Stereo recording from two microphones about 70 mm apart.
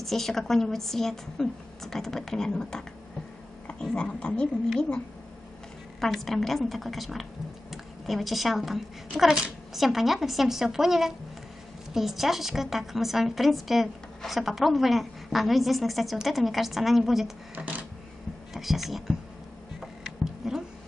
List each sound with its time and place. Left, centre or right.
0.0 s a woman's voice: centre
3.9 s speech: centre
5.9 s a woman's voice: centre
17.6 s a sound: right
18.5 s speech: centre
19.8 s a sound: centre